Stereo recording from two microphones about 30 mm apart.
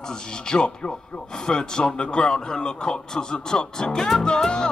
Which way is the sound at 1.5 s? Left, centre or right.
Left.